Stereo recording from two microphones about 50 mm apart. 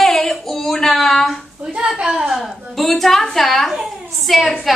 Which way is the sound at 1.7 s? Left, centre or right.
Centre.